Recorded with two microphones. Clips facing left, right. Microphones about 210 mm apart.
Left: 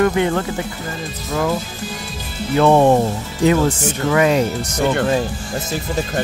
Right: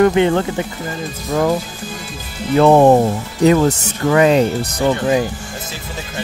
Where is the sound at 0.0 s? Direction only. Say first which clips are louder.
Right 4 dB; 25° right (ahead or behind).